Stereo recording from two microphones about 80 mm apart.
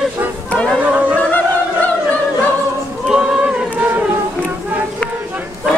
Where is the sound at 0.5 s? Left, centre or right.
Centre.